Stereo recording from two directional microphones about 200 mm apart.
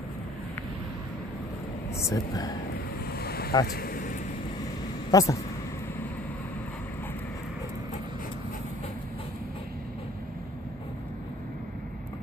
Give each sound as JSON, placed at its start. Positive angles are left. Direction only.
{"t": 2.0, "sound": "speech", "side_deg": 15}
{"t": 3.2, "sound": "vehicle", "side_deg": 50}
{"t": 5.1, "sound": "speech", "side_deg": 15}